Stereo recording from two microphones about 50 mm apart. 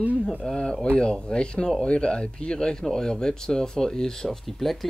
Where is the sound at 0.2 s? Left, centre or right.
Centre.